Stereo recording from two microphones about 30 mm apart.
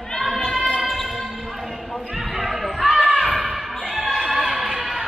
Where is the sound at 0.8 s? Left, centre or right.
Centre.